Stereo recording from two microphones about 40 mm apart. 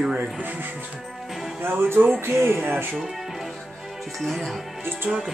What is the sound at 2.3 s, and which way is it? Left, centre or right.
Speech, right.